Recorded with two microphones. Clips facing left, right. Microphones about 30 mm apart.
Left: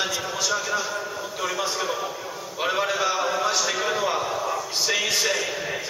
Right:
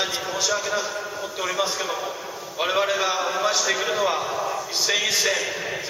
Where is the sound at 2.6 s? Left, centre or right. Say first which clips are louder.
Right 1 dB; centre.